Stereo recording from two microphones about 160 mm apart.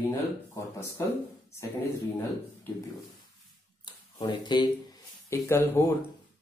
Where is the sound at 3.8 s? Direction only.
25° left (ahead or behind).